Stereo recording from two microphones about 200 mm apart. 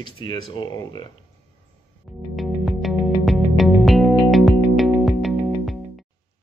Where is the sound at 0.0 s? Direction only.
25° left (ahead or behind).